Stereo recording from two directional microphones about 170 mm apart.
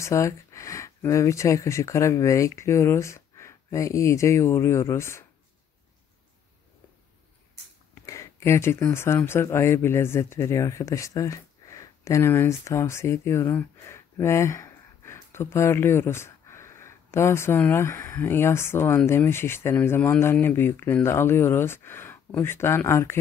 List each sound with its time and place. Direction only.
0.0 s speech: 15° left (ahead or behind)
7.9 s speech: 20° left (ahead or behind)